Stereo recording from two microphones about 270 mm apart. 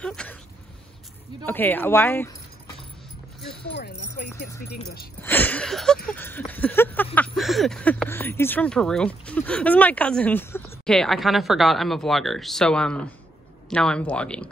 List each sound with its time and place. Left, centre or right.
0.0 s a sound: centre
1.4 s speech: centre
3.7 s speech: left
5.2 s speech: centre